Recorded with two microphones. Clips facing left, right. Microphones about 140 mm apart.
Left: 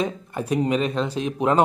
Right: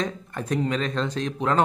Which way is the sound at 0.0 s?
10° left (ahead or behind).